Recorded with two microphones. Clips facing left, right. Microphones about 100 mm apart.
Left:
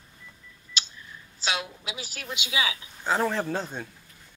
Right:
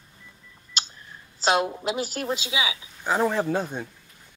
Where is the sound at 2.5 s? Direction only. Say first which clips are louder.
Right 1 dB; 20° right (ahead or behind).